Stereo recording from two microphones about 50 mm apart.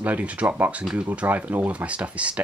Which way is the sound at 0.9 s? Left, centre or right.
Right.